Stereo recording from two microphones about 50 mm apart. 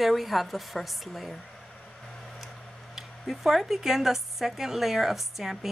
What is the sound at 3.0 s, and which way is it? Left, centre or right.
Speech, centre.